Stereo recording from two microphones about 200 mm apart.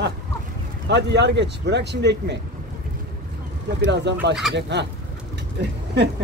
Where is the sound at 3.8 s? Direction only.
60° right (ahead or behind).